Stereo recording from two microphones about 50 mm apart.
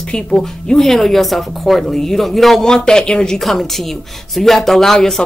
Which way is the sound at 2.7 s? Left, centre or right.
Centre.